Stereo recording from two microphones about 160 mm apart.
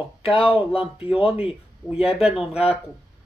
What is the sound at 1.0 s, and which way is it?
Speech, 5° right (ahead or behind).